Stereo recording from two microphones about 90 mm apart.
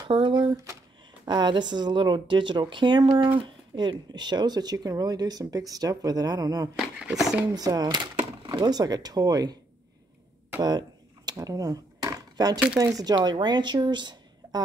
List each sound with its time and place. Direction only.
0.1 s speech: 70° right (ahead or behind)
0.4 s speech: 45° right (ahead or behind)
1.2 s speech: 55° right (ahead or behind)
7.2 s speech: 5° right (ahead or behind)
7.5 s speech: 45° right (ahead or behind)
10.6 s a sound: 50° right (ahead or behind)
13.0 s speech: 55° right (ahead or behind)